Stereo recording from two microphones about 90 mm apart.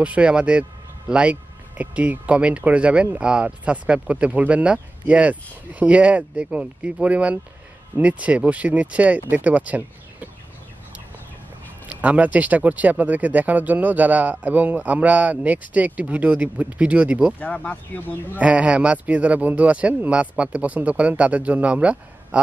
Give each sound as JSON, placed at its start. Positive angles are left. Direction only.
{"t": 0.0, "sound": "speech", "side_deg": -15}
{"t": 11.9, "sound": "speech", "side_deg": -15}
{"t": 17.4, "sound": "speech", "side_deg": 15}
{"t": 18.4, "sound": "speech", "side_deg": -15}